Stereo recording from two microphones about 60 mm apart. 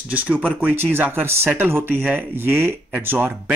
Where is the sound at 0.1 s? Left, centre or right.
Right.